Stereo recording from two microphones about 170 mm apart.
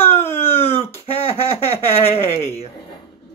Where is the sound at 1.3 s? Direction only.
35° left (ahead or behind).